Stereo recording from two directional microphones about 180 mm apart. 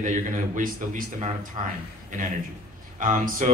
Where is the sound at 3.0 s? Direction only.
45° right (ahead or behind).